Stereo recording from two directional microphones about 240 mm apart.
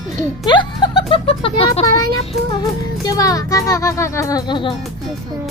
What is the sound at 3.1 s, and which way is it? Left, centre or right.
Speech, centre.